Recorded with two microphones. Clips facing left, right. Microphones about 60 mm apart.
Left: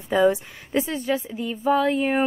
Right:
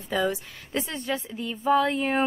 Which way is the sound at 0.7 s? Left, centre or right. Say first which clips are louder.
Left 6 dB; centre.